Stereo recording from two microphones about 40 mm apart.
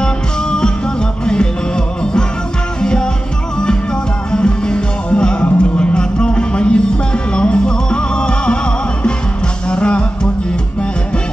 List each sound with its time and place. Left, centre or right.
0.0 s music: left
2.8 s music: centre
4.3 s music: left
9.7 s music: left